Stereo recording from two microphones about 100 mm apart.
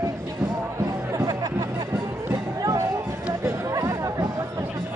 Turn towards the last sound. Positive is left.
turn(degrees=-30)  # may be behind; listen again after turning